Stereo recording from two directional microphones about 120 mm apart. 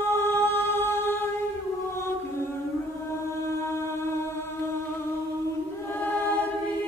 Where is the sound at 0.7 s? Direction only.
20° left (ahead or behind).